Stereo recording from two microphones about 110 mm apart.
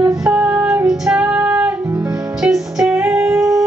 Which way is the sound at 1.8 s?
25° right (ahead or behind).